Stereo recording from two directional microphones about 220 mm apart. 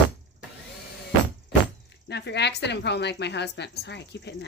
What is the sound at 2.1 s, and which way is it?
Speech, 50° left (ahead or behind).